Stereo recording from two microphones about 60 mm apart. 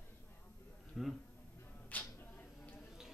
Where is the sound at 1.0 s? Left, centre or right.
Centre.